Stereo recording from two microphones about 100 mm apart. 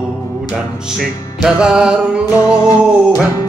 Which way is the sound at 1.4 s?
10° right (ahead or behind).